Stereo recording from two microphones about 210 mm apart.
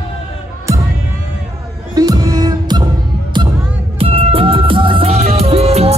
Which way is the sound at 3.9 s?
25° right (ahead or behind).